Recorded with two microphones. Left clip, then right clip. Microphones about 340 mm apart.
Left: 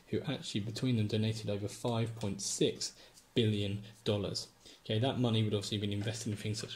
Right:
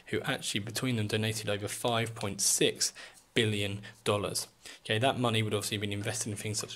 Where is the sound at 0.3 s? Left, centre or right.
Centre.